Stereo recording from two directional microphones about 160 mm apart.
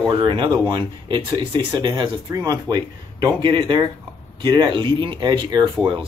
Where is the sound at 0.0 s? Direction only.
30° right (ahead or behind).